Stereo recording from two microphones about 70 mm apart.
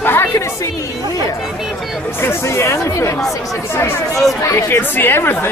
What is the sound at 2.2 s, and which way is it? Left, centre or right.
Speech, left.